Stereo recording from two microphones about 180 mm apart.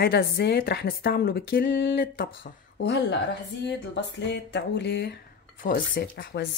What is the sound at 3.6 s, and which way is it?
Music, 75° left (ahead or behind).